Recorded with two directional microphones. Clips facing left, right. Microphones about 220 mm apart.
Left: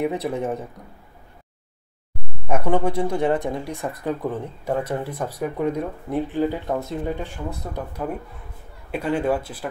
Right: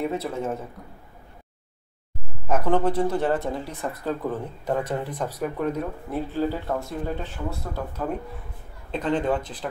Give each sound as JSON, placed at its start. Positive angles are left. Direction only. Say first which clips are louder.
{"t": 0.0, "sound": "speech", "louder": "left 3 dB", "side_deg": 15}
{"t": 2.4, "sound": "speech", "louder": "left 1 dB", "side_deg": 10}